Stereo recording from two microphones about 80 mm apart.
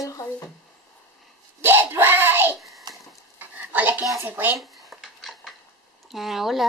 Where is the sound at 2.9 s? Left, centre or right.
Right.